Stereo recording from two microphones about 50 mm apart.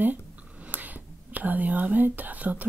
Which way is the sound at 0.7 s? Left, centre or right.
Right.